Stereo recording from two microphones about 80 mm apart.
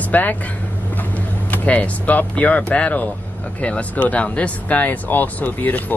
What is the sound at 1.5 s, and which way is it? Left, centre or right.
Speech, centre.